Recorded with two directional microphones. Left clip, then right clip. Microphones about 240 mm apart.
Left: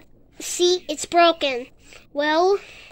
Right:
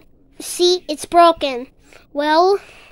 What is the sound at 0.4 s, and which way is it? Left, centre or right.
A child's voice, centre.